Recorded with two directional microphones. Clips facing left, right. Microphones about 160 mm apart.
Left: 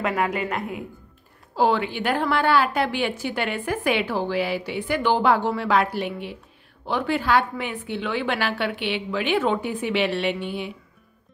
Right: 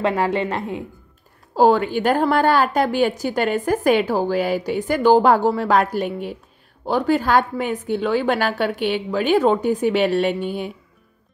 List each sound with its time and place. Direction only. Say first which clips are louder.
0.0 s a woman's voice: right 4 dB; 30° right (ahead or behind)
1.5 s a woman's voice: right 6 dB; 40° right (ahead or behind)